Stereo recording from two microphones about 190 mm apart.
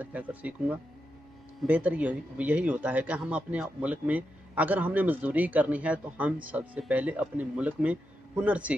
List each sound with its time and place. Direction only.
0.0 s speech: 10° right (ahead or behind)